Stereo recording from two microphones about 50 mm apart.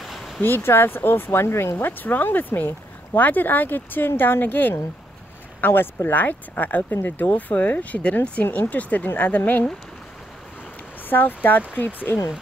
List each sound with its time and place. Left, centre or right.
0.0 s a sound: centre
0.4 s speech: left
1.8 s speech: left
6.1 s speech: left
11.1 s speech: left